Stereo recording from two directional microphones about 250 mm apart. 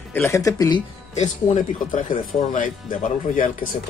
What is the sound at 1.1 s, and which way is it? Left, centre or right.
Speech, left.